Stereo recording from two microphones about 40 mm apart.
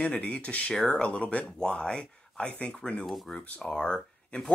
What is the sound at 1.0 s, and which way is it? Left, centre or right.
Speech, left.